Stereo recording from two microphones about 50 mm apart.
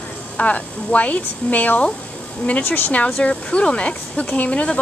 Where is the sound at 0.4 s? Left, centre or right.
Left.